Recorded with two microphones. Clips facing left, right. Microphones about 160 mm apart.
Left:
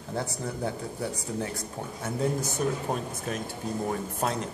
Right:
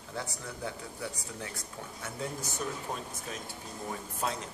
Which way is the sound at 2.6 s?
60° left (ahead or behind).